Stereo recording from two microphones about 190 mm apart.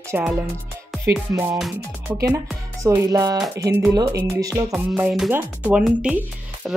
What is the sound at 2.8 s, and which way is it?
Speech, 15° right (ahead or behind).